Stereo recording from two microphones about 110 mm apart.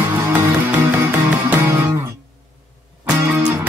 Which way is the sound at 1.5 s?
20° right (ahead or behind).